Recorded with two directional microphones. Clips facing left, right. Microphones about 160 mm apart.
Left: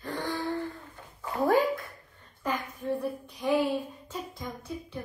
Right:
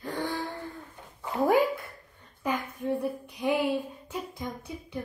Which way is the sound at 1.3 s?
20° right (ahead or behind).